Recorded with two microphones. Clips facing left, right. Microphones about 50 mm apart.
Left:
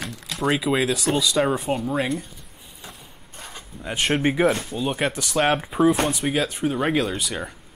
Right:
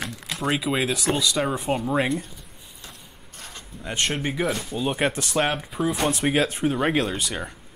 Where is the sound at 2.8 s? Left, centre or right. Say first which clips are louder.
Left 3 dB; centre.